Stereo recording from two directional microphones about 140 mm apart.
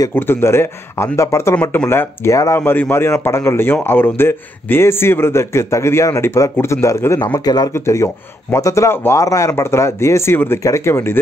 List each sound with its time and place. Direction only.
0.1 s speech: 15° left (ahead or behind)